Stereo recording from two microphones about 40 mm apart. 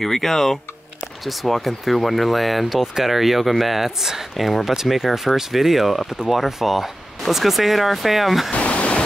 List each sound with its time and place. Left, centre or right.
0.0 s speech: centre
8.5 s waterfall: left